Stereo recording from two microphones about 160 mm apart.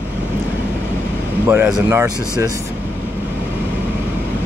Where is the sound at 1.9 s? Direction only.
20° right (ahead or behind).